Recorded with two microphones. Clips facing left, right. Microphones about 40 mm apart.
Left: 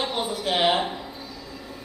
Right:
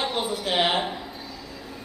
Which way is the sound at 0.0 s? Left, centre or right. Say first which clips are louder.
Even; centre.